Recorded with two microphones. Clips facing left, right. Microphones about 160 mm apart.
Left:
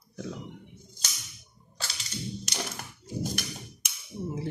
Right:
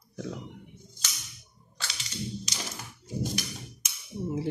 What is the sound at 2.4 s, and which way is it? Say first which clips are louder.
Tap: left 3 dB; 60° left (ahead or behind).